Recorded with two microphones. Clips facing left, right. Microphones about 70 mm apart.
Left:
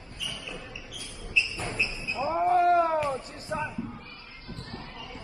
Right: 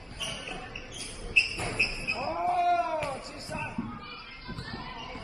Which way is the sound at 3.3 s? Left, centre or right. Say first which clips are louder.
Left 4 dB; left.